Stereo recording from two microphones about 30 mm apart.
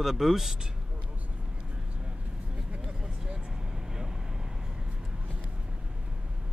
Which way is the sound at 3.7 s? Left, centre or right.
Centre.